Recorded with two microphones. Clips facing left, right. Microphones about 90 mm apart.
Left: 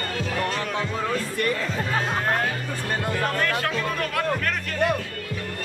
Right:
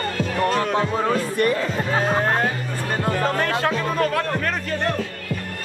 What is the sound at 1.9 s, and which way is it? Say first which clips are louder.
Music: right 5 dB; 30° right (ahead or behind).